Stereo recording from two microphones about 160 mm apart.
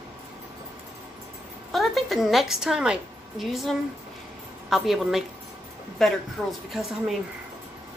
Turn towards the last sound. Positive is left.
turn(degrees=0)  # may be behind; listen again after turning